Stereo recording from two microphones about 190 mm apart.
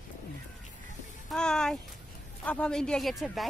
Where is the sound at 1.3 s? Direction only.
5° left (ahead or behind).